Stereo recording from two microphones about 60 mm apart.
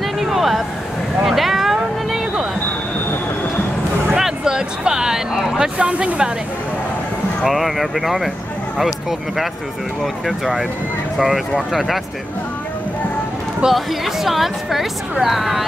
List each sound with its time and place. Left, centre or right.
0.0 s a sound: centre
4.1 s a sound: centre
5.8 s speech: centre
7.4 s speech: centre
10.2 s speech: centre
13.7 s speech: centre